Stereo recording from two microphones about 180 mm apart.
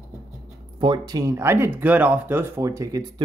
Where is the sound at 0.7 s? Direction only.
25° right (ahead or behind).